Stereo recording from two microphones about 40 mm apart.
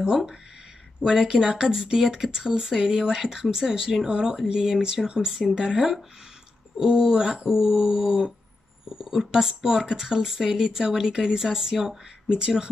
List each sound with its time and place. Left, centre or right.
0.0 s speech: centre